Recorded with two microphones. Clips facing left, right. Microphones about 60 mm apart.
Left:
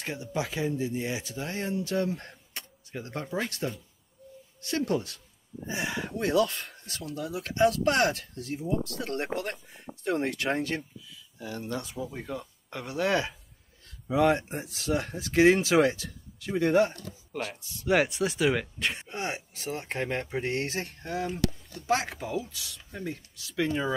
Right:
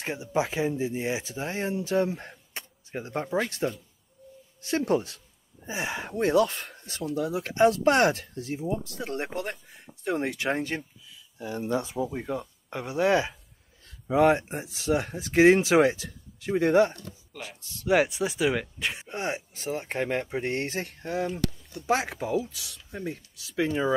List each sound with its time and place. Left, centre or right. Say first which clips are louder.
0.0 s speech: right 4 dB; right
9.4 s a sound: right 1 dB; centre
10.0 s speech: right 1 dB; centre
19.8 s speech: right 3 dB; centre